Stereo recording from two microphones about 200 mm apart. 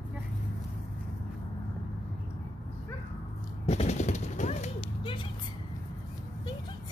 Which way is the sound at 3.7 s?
35° left (ahead or behind).